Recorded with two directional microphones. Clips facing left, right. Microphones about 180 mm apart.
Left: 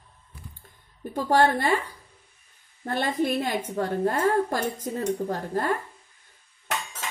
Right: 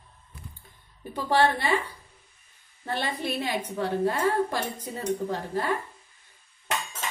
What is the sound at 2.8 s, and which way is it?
A woman's voice, 50° left (ahead or behind).